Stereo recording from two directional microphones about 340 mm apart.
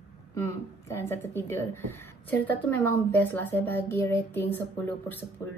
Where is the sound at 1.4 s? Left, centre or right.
Centre.